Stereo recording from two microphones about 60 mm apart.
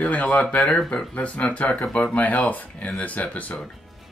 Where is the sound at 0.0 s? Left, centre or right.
Left.